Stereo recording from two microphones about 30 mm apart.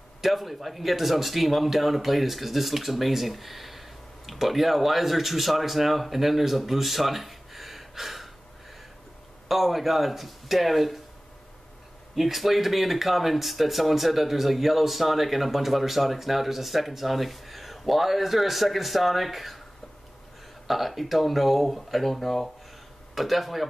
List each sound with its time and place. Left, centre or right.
0.2 s speech: centre
9.5 s speech: centre
12.2 s speech: centre
20.6 s speech: centre
23.1 s speech: centre